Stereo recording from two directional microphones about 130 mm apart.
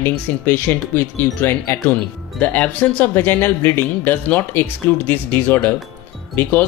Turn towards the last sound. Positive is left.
turn(degrees=15)  # may be behind; listen again after turning